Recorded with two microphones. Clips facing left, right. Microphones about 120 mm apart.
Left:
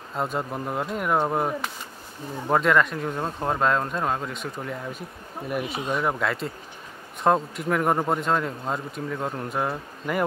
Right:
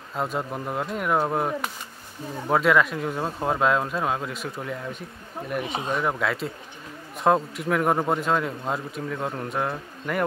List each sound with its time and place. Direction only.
0.1 s a man's voice: centre (ahead or behind)
5.6 s speech: 30° right (ahead or behind)
5.9 s a man's voice: centre (ahead or behind)